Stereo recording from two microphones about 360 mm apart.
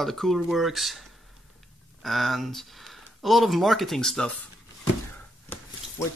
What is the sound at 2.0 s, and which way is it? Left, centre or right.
Speech, centre.